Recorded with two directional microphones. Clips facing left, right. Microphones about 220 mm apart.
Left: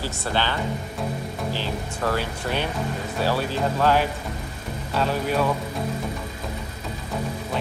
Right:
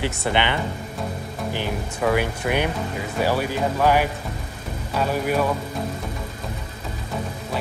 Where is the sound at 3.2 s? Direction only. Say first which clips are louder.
Right 2 dB; 15° right (ahead or behind).